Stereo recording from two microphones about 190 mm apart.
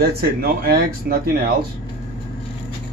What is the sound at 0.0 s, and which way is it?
Speech, 55° right (ahead or behind).